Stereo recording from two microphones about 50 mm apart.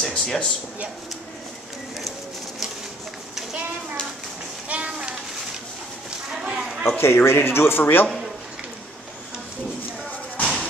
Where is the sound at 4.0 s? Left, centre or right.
Centre.